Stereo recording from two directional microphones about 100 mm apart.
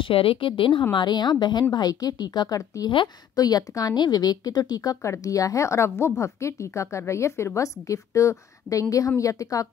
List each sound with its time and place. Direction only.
0.0 s a woman's voice: 65° left (ahead or behind)
0.9 s a woman's voice: 45° left (ahead or behind)